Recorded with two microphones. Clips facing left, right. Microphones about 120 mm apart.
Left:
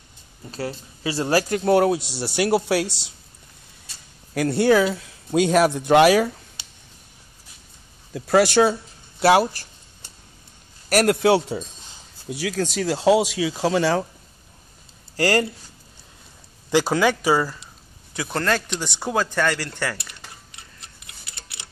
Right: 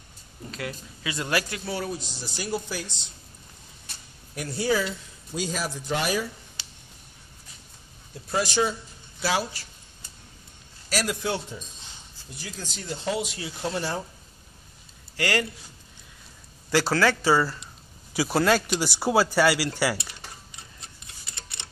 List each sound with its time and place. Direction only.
0.5 s speech: 35° left (ahead or behind)
1.5 s speech: 55° left (ahead or behind); by 2.9 s 80° left
4.3 s speech: 70° left (ahead or behind)
8.1 s speech: 80° left; by 9.5 s 60° left (ahead or behind)
10.9 s speech: 60° left (ahead or behind); by 14.0 s 90° left
15.1 s speech: 40° left (ahead or behind)
16.7 s speech: 15° left (ahead or behind)
18.1 s speech: 5° right (ahead or behind)
21.3 s clock: 5° left (ahead or behind)